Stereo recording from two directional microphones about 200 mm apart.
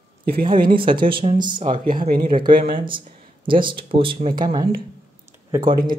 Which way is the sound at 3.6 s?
25° right (ahead or behind).